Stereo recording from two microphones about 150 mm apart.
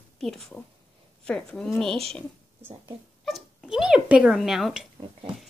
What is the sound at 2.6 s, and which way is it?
Speech, 15° right (ahead or behind).